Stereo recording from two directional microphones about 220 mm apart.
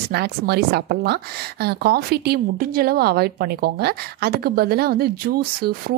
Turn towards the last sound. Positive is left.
turn(degrees=-45)  # may be behind; listen again after turning